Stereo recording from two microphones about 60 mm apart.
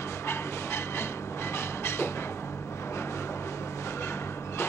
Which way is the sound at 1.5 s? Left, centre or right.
Left.